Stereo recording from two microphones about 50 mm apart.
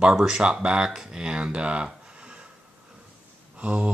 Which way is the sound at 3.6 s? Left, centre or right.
Right.